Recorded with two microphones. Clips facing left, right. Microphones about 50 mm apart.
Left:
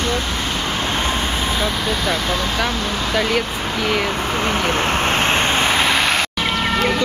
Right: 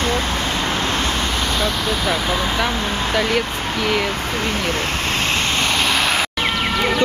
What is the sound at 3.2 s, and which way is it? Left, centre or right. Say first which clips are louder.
Speech: left 1 dB; centre.